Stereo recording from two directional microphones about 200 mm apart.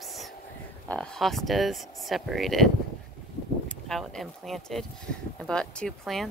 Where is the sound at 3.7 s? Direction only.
5° left (ahead or behind).